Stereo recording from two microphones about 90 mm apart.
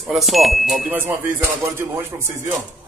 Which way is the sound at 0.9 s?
25° right (ahead or behind).